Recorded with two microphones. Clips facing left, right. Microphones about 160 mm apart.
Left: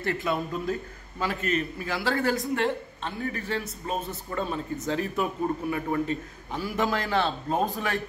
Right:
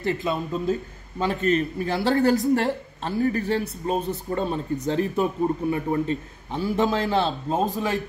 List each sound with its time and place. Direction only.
0.0 s a man's voice: 20° right (ahead or behind)